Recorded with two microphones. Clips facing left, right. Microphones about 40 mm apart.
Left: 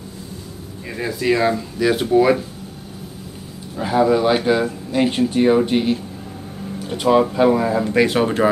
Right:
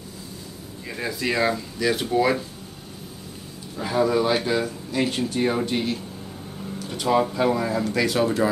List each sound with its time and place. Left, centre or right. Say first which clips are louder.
0.8 s speech: left 6 dB; centre
3.7 s speech: left 5 dB; left
7.9 s speech: left 5 dB; left